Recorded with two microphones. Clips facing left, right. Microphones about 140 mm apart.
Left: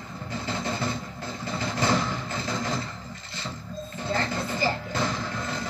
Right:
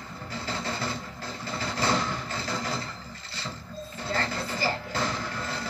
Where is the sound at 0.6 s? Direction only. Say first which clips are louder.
Left 3 dB; 20° left (ahead or behind).